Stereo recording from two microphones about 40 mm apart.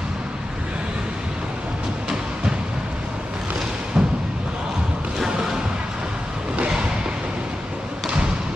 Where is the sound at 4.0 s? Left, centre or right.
Centre.